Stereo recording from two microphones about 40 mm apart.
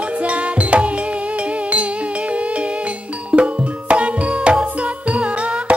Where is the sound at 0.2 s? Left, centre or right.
Right.